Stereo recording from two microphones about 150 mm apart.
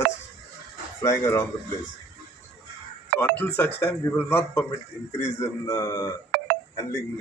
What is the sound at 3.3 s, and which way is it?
A man's voice, 10° left (ahead or behind).